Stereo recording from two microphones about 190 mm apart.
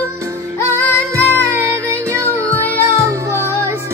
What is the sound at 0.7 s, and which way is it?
Music, 10° left (ahead or behind).